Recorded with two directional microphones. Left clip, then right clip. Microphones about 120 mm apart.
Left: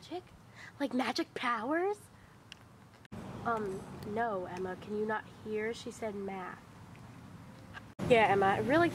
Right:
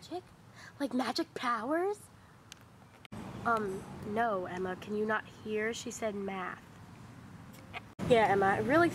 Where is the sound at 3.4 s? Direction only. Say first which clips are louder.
Right 3 dB; 25° right (ahead or behind).